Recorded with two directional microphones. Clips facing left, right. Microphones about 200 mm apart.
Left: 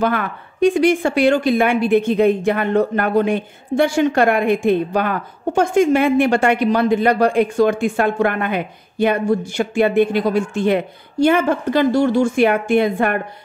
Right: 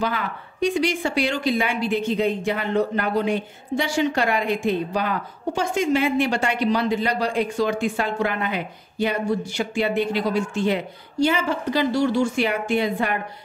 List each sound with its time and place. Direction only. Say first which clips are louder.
0.0 s a woman's voice: left 6 dB; 55° left (ahead or behind)